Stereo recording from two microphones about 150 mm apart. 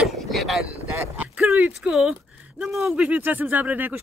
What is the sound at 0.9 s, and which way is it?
Speech, 15° right (ahead or behind).